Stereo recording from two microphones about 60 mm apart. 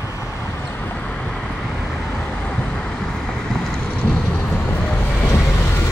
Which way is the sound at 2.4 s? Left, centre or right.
Centre.